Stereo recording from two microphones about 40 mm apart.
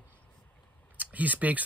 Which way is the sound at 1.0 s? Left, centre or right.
Right.